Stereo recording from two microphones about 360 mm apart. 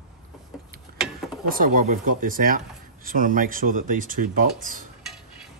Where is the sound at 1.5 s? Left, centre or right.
Right.